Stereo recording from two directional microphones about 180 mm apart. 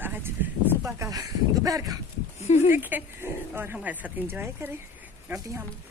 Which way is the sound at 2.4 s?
40° left (ahead or behind).